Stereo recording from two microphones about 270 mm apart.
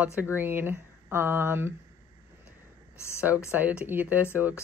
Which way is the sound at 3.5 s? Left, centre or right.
Centre.